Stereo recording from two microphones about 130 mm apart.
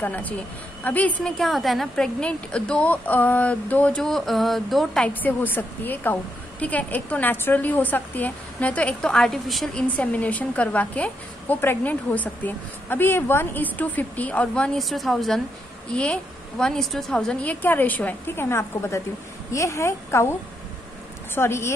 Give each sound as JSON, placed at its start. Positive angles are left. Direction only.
{"t": 0.0, "sound": "a woman's voice", "side_deg": 10}
{"t": 21.4, "sound": "a woman's voice", "side_deg": 20}